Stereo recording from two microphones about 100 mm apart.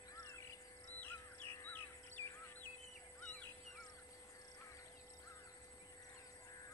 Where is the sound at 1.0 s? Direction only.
20° left (ahead or behind).